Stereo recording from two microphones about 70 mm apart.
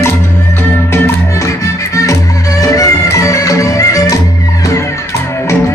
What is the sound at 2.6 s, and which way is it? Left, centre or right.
Music, left.